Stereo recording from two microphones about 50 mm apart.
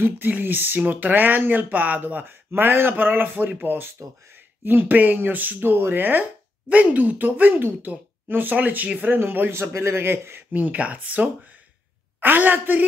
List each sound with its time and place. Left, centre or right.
0.2 s speech: right
6.7 s speech: right
9.5 s a man's voice: right
10.5 s speech: right